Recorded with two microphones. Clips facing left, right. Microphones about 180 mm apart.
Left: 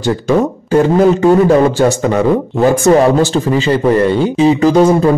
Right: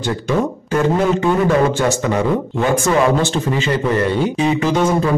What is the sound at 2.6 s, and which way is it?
Speech, 40° left (ahead or behind).